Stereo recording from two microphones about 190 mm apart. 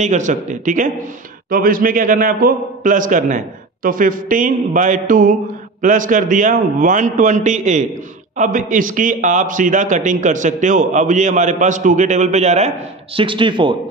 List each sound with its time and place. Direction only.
0.0 s a man's voice: 40° right (ahead or behind)